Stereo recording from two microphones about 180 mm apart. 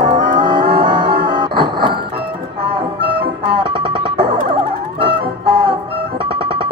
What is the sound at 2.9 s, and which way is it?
Music, 65° right (ahead or behind).